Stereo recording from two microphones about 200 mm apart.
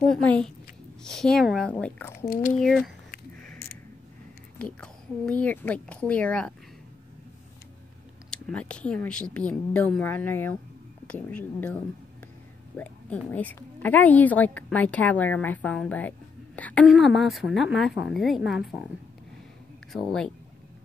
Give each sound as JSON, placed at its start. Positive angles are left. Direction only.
{"t": 0.1, "sound": "speech", "side_deg": 5}
{"t": 2.2, "sound": "speech", "side_deg": 45}
{"t": 4.6, "sound": "a woman's voice", "side_deg": 5}
{"t": 8.3, "sound": "a woman's voice", "side_deg": 5}
{"t": 19.9, "sound": "speech", "side_deg": 0}